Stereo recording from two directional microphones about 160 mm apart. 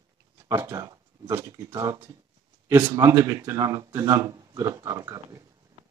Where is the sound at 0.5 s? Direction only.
20° right (ahead or behind).